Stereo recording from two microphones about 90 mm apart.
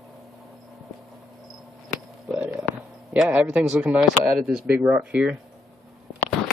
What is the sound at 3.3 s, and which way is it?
Speech, 15° right (ahead or behind).